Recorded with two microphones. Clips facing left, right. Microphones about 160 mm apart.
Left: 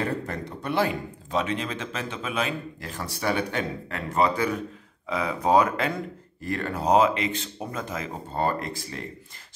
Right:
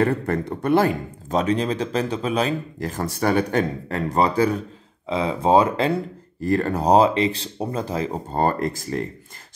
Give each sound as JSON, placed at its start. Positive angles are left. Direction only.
{"t": 0.0, "sound": "speech", "side_deg": -55}
{"t": 6.4, "sound": "speech", "side_deg": -40}